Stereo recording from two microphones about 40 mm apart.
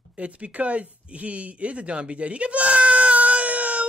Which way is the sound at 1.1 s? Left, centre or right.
Right.